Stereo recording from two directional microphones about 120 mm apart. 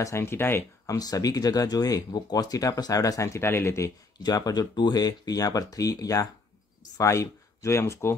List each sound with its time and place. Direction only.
0.0 s speech: 20° left (ahead or behind)
0.9 s speech: 30° left (ahead or behind)
4.2 s speech: 35° left (ahead or behind)